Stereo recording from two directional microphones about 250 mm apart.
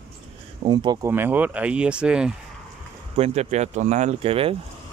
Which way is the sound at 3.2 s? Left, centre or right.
Right.